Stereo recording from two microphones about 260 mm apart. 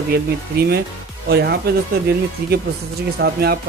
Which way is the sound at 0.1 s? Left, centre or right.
Right.